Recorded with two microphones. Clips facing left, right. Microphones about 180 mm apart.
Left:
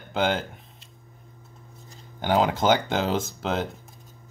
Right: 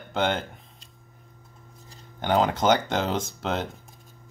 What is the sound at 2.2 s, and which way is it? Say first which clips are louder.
Speech: even; 5° left (ahead or behind).